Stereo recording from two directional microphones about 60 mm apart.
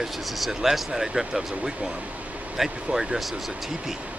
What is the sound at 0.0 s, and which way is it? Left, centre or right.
Speech, centre.